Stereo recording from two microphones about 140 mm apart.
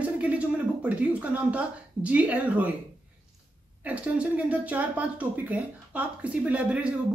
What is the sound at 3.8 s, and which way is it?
Speech, 10° right (ahead or behind).